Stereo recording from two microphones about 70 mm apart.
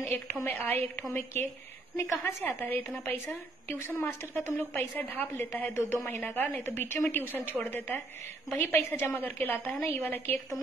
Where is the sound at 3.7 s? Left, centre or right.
Left.